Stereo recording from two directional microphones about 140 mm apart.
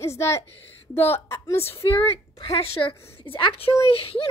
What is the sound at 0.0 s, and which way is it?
A woman's voice, 20° left (ahead or behind).